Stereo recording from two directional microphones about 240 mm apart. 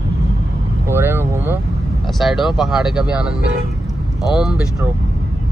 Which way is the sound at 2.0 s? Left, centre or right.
Centre.